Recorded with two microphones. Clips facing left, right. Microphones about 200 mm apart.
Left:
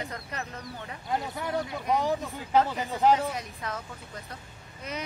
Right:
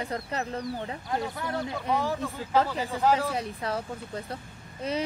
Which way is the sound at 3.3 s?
30° right (ahead or behind).